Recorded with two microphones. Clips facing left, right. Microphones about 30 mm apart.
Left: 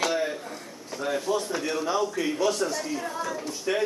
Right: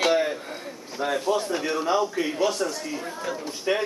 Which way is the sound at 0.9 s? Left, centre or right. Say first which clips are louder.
Right 2 dB; right.